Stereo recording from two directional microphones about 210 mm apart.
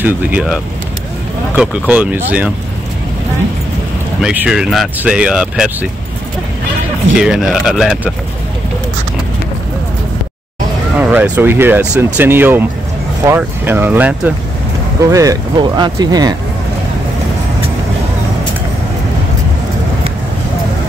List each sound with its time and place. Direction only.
0.0 s speech: 5° right (ahead or behind)
4.2 s speech: 5° right (ahead or behind)
7.2 s speech: 5° right (ahead or behind)
11.0 s speech: 5° right (ahead or behind)